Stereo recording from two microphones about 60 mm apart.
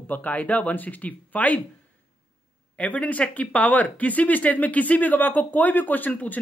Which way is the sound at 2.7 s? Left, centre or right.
Left.